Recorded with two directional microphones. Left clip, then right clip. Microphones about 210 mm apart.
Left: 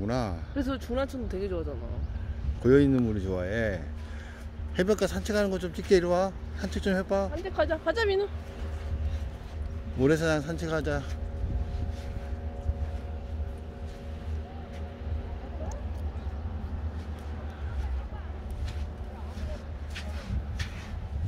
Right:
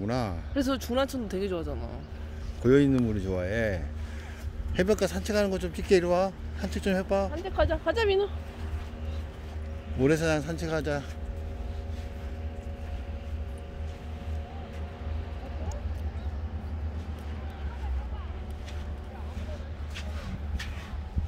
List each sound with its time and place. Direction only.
0.0 s speech: centre (ahead or behind)
0.6 s speech: 55° right (ahead or behind)
2.6 s speech: centre (ahead or behind)
7.4 s speech: 20° right (ahead or behind)
9.9 s speech: centre (ahead or behind)